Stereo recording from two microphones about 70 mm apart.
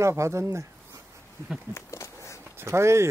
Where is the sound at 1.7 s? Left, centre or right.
Left.